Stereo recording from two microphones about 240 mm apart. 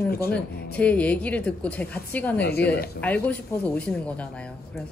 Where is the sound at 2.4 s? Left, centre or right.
Left.